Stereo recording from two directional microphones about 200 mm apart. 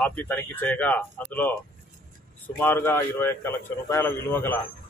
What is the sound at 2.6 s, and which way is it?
A man's voice, 10° left (ahead or behind).